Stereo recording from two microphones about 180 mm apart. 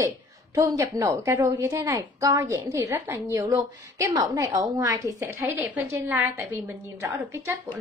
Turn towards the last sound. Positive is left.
turn(degrees=-15)  # may be behind; listen again after turning